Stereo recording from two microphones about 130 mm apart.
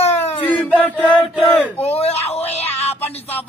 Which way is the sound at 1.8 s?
50° left (ahead or behind).